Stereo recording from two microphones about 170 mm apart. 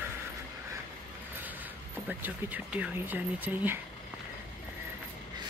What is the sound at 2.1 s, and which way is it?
Speech, 10° right (ahead or behind).